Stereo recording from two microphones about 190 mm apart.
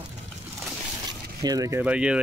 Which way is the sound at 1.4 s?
20° right (ahead or behind).